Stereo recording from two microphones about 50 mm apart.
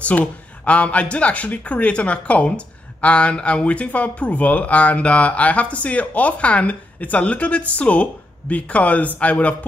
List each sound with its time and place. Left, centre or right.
0.0 s speech: left